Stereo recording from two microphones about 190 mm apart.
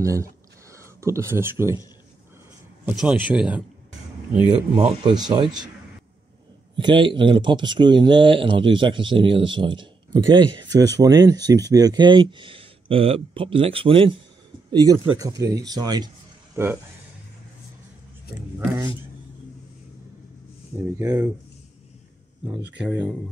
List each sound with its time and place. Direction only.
0.0 s speech: 15° right (ahead or behind)
2.8 s speech: 5° right (ahead or behind)
4.7 s speech: 25° right (ahead or behind)
6.8 s speech: 25° right (ahead or behind)
21.0 s speech: 15° right (ahead or behind)
22.6 s speech: 65° right (ahead or behind)
22.8 s speech: 5° right (ahead or behind)